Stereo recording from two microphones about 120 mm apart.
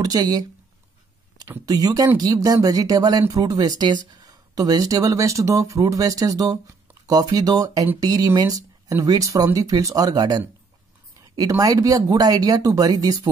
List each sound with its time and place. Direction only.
0.0 s speech: 35° right (ahead or behind)
1.7 s speech: 30° right (ahead or behind)